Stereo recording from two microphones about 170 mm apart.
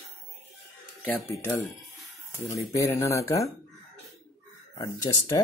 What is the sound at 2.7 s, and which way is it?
Speech, 20° left (ahead or behind).